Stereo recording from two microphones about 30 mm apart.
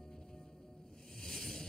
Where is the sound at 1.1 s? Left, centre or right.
Centre.